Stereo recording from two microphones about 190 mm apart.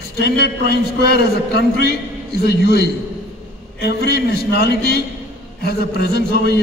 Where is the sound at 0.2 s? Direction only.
60° left (ahead or behind).